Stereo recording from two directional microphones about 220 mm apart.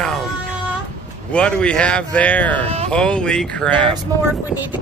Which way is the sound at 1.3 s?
5° left (ahead or behind).